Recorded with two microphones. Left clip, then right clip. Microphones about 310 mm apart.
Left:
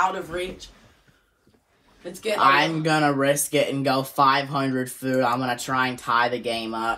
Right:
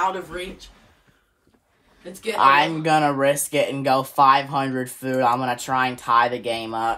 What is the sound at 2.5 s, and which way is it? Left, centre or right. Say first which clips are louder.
Speech: right 3 dB; right.